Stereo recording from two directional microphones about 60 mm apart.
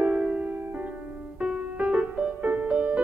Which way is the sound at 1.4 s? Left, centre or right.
Centre.